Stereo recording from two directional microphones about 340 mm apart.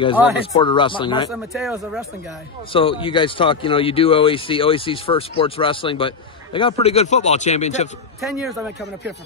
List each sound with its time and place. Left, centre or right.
0.5 s speech: centre
1.3 s speech: centre
2.7 s speech: centre
8.2 s speech: centre